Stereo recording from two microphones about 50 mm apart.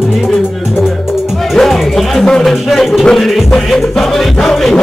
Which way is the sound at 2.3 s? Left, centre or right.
Centre.